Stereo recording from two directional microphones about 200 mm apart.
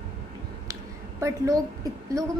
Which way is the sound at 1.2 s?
15° right (ahead or behind).